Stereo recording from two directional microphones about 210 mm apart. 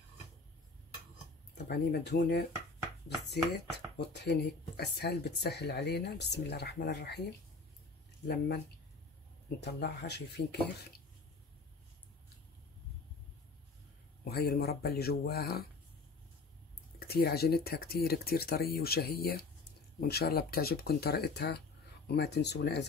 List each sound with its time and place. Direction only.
1.5 s speech: 50° left (ahead or behind)
9.6 s speech: 50° left (ahead or behind)
14.2 s speech: 50° left (ahead or behind)
17.0 s speech: 45° left (ahead or behind)